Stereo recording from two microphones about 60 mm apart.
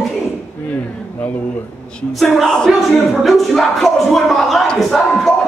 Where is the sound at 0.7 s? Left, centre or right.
Left.